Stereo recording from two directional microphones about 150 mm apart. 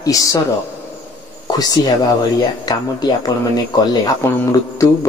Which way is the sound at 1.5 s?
30° left (ahead or behind).